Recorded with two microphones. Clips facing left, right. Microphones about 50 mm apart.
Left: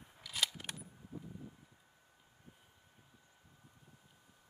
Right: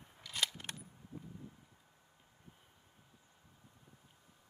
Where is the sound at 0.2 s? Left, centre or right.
Centre.